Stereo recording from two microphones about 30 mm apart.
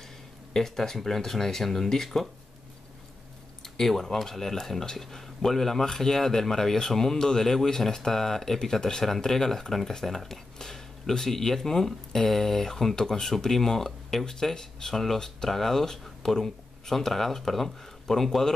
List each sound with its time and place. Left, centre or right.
0.6 s speech: centre
3.6 s speech: centre